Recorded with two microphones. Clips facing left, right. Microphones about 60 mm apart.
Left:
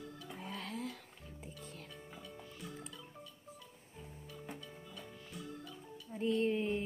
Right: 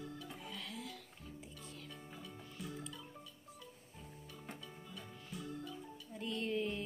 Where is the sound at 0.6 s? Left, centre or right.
Left.